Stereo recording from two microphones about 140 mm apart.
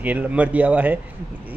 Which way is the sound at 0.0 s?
10° right (ahead or behind).